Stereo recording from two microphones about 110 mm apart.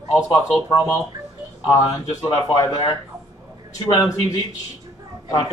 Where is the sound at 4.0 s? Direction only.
30° left (ahead or behind).